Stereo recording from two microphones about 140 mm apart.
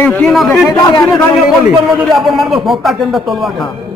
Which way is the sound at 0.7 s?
25° left (ahead or behind).